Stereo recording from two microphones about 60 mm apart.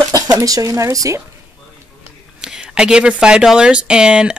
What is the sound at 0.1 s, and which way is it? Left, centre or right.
Speech, right.